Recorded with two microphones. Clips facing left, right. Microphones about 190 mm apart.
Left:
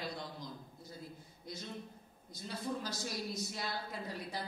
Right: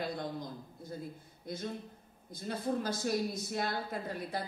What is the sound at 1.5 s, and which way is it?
A woman's voice, 55° right (ahead or behind).